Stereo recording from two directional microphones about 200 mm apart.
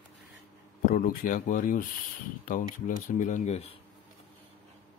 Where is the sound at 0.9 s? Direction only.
45° left (ahead or behind).